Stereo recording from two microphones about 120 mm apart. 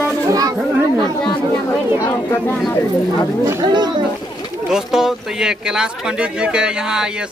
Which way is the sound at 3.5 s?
35° right (ahead or behind).